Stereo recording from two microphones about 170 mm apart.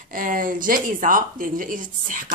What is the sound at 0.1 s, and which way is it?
Speech, 55° right (ahead or behind).